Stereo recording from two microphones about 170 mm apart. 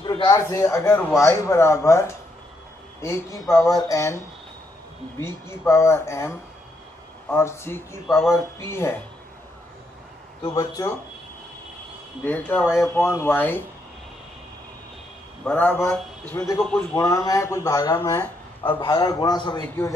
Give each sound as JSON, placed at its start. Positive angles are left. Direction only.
{"t": 0.0, "sound": "a man's voice", "side_deg": 25}
{"t": 5.2, "sound": "speech", "side_deg": 15}
{"t": 10.4, "sound": "a man's voice", "side_deg": 20}
{"t": 12.3, "sound": "speech", "side_deg": 5}
{"t": 12.9, "sound": "speech", "side_deg": 15}
{"t": 15.4, "sound": "speech", "side_deg": 10}
{"t": 16.9, "sound": "a man's voice", "side_deg": 20}